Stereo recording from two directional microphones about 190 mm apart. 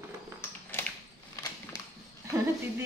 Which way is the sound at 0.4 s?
10° left (ahead or behind).